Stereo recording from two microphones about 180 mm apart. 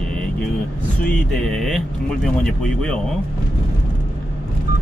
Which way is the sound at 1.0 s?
5° left (ahead or behind).